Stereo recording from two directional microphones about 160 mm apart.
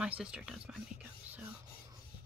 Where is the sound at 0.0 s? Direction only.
5° right (ahead or behind).